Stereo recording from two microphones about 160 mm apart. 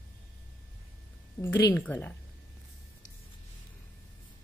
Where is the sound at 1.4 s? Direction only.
25° left (ahead or behind).